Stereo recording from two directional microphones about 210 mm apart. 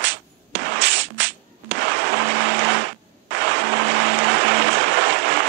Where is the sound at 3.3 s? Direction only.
55° right (ahead or behind).